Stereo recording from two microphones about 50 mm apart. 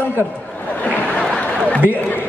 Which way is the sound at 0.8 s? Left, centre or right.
Left.